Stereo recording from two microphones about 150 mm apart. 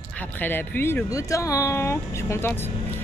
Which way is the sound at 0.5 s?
15° left (ahead or behind).